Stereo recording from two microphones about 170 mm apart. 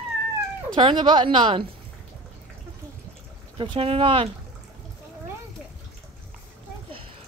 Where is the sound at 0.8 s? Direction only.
30° right (ahead or behind).